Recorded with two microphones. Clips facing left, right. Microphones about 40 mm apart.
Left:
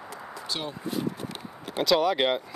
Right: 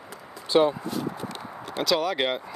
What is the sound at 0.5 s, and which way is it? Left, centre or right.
Speech, right.